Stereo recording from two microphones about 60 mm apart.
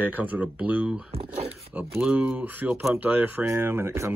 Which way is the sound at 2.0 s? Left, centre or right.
Right.